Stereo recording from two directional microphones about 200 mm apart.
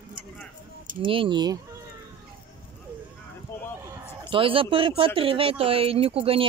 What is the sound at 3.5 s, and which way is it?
Horse, 10° left (ahead or behind).